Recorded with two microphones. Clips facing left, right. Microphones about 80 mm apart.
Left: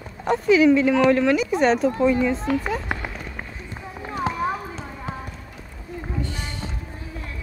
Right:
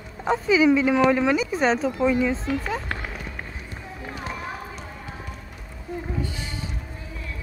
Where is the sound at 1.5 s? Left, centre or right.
Centre.